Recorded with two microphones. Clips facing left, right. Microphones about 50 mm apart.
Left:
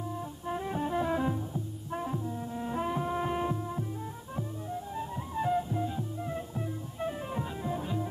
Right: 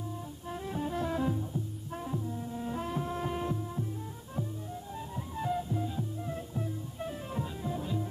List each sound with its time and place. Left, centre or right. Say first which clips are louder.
0.5 s music: left 3 dB; centre
4.9 s music: left 4 dB; centre